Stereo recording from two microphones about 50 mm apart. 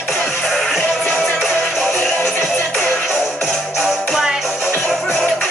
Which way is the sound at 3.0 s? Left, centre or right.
Centre.